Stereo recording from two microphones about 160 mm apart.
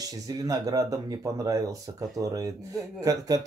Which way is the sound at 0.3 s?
25° right (ahead or behind).